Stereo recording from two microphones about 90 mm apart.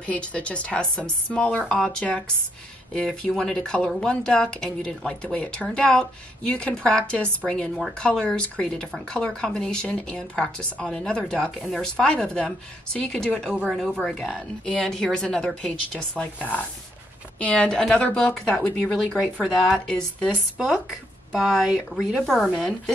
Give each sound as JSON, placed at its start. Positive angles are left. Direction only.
{"t": 0.0, "sound": "a woman's voice", "side_deg": 15}